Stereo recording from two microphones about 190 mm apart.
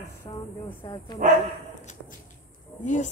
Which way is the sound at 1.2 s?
45° right (ahead or behind).